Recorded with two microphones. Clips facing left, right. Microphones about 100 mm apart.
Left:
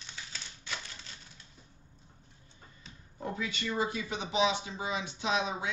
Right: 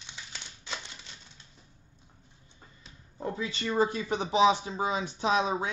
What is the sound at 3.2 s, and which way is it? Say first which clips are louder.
Speech: right 3 dB; 30° right (ahead or behind).